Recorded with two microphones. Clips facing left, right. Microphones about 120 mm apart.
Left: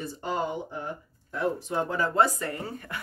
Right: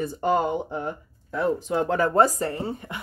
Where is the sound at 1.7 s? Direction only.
90° right.